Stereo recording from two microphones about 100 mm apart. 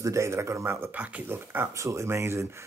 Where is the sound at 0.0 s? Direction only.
30° right (ahead or behind).